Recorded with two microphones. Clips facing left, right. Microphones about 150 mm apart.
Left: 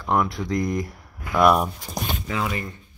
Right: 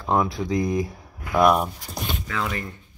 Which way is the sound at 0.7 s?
20° right (ahead or behind).